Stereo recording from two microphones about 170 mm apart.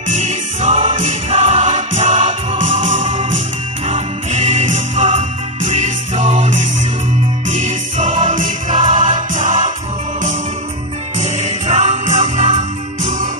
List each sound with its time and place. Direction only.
0.1 s music: 40° right (ahead or behind)
11.1 s music: 40° right (ahead or behind)